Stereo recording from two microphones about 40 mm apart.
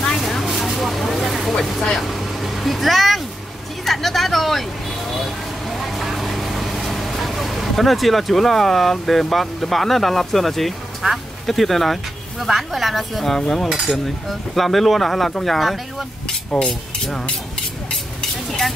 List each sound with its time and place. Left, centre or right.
0.2 s vehicle: centre
3.8 s a sound: centre
5.2 s vehicle: centre
9.0 s speech: centre
16.3 s vehicle: centre